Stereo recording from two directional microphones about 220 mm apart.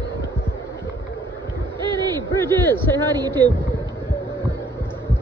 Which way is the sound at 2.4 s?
10° left (ahead or behind).